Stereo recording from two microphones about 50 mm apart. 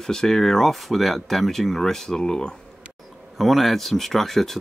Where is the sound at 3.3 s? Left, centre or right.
Centre.